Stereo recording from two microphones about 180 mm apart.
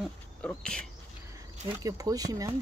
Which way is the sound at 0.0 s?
5° left (ahead or behind).